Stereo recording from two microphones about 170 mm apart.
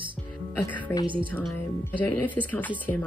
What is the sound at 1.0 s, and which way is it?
Speech, 30° right (ahead or behind).